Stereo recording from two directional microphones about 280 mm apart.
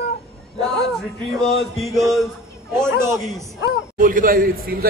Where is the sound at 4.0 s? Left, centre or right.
Right.